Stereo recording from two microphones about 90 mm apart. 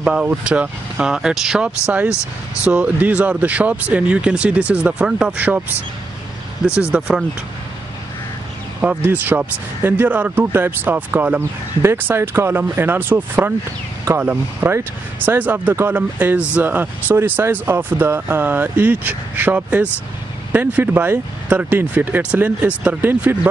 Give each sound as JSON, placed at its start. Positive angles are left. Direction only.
{"t": 0.0, "sound": "speech", "side_deg": -10}
{"t": 6.7, "sound": "speech", "side_deg": -10}
{"t": 8.8, "sound": "speech", "side_deg": -20}